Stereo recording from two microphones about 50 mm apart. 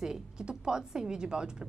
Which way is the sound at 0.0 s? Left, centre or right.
Centre.